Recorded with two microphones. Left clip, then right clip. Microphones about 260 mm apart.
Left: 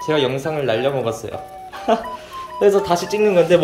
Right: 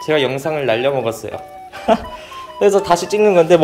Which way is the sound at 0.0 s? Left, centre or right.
Centre.